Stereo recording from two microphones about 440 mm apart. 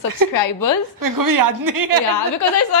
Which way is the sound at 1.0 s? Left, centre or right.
Right.